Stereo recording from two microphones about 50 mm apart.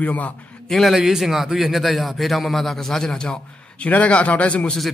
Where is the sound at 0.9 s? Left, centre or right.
Centre.